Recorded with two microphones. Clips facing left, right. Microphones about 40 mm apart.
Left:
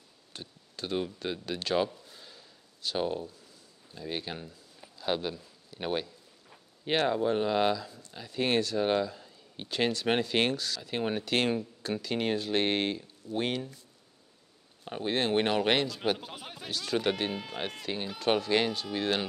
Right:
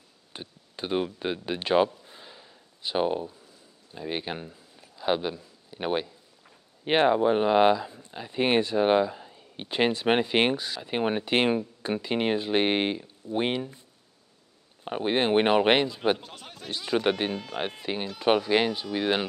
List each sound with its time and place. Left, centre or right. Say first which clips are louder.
0.3 s speech: right 4 dB; right
2.0 s a sound: right 4 dB; right
3.9 s a man's voice: right 4 dB; right
14.9 s speech: right 5 dB; right
16.2 s speech: left 1 dB; centre
16.7 s speech: right 4 dB; centre
17.3 s speech: right 3 dB; centre
17.6 s speech: right 4 dB; centre